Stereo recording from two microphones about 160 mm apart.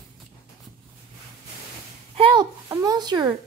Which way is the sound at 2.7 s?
25° right (ahead or behind).